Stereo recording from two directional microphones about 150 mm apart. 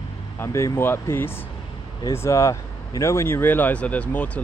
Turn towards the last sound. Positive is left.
turn(degrees=10)  # may be behind; listen again after turning